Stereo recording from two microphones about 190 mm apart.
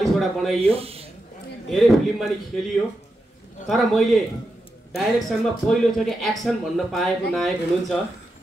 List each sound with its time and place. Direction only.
0.0 s snake: centre (ahead or behind)
0.6 s speech: 30° right (ahead or behind)
1.7 s speech: centre (ahead or behind)
3.6 s speech: centre (ahead or behind)